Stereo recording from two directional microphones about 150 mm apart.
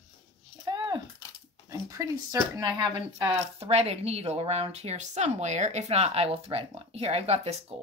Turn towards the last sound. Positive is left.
turn(degrees=-45)  # may be behind; listen again after turning